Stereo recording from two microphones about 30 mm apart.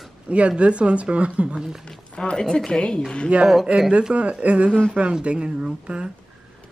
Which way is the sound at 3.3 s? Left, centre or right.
Right.